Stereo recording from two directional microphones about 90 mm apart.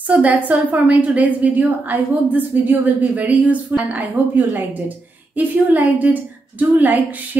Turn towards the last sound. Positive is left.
turn(degrees=-20)  # may be behind; listen again after turning